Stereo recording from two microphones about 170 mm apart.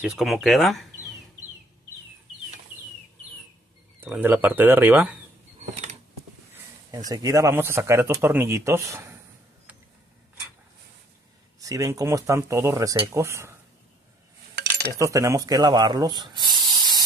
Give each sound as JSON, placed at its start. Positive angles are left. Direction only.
{"t": 0.0, "sound": "speech", "side_deg": 0}
{"t": 4.0, "sound": "speech", "side_deg": -10}
{"t": 5.6, "sound": "creak", "side_deg": -40}
{"t": 7.1, "sound": "speech", "side_deg": -20}
{"t": 11.6, "sound": "speech", "side_deg": -20}
{"t": 14.5, "sound": "cutlery", "side_deg": -70}
{"t": 14.9, "sound": "speech", "side_deg": -20}